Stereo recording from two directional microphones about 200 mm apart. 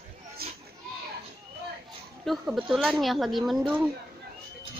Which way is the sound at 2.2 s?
5° right (ahead or behind).